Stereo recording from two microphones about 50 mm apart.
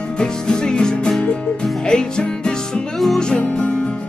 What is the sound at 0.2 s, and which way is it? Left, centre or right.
Music, centre.